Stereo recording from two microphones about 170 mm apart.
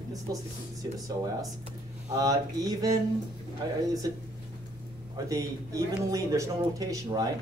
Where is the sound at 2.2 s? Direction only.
20° right (ahead or behind).